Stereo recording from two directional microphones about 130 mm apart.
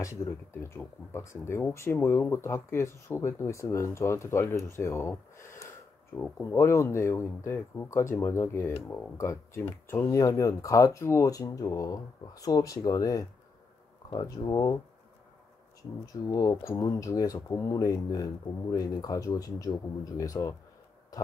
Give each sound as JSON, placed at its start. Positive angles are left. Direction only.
{"t": 0.0, "sound": "speech", "side_deg": 25}
{"t": 14.2, "sound": "speech", "side_deg": 30}
{"t": 16.1, "sound": "speech", "side_deg": 25}
{"t": 21.1, "sound": "a sound", "side_deg": 30}